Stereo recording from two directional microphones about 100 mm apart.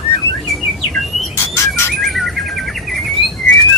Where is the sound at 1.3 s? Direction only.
30° left (ahead or behind).